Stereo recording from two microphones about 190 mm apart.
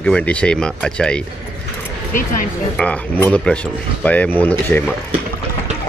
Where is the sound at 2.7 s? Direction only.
5° left (ahead or behind).